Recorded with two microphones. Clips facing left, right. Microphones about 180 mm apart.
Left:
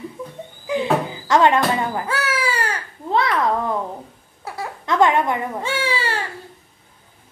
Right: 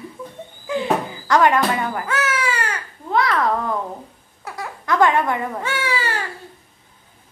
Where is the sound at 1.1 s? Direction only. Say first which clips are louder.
Even; 25° left (ahead or behind).